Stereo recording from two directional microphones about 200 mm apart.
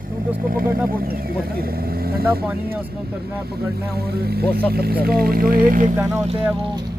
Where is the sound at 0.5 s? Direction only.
45° right (ahead or behind).